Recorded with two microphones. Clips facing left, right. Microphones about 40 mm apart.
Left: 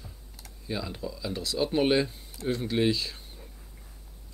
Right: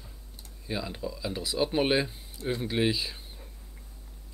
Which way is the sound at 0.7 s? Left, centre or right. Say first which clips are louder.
Even; centre.